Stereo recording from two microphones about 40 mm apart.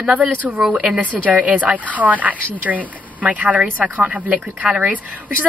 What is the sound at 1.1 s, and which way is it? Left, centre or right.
Speech, right.